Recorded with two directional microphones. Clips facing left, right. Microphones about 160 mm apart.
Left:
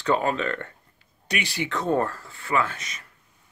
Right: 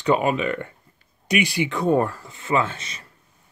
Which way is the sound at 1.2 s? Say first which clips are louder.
Right 7 dB; 15° right (ahead or behind).